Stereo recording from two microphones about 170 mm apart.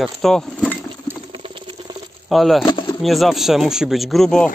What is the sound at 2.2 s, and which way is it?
Speech, centre (ahead or behind).